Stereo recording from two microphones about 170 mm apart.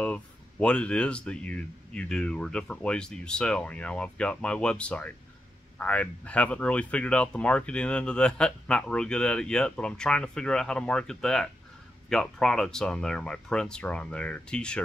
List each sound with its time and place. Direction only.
0.0 s speech: 5° left (ahead or behind)